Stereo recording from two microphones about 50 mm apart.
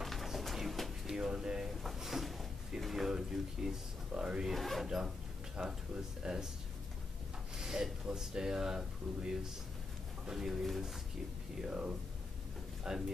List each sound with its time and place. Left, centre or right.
0.0 s a sound: centre
1.0 s drawer open or close: centre
1.7 s drawer open or close: centre
2.8 s speech: centre
4.5 s speech: centre
4.8 s speech: centre
7.5 s speech: centre